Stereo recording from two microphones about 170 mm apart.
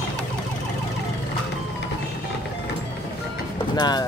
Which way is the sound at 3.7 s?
25° left (ahead or behind).